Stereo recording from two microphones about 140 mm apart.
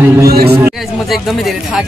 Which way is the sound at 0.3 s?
90° right.